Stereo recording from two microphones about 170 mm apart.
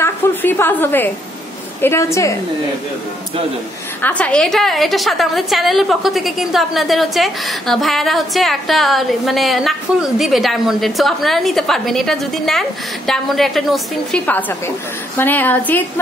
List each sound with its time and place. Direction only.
0.0 s a sound: 10° left (ahead or behind)
1.8 s a woman's voice: 15° left (ahead or behind)
4.0 s a woman's voice: 10° left (ahead or behind)